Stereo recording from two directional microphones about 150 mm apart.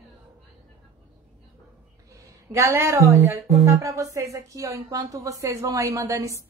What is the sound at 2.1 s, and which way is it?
Speech, 20° right (ahead or behind).